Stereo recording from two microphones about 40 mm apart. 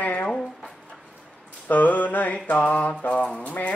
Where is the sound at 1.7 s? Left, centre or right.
Left.